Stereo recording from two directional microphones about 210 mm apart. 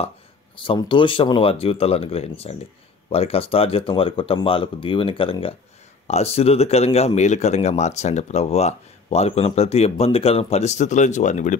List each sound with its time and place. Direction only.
0.6 s speech: 25° left (ahead or behind)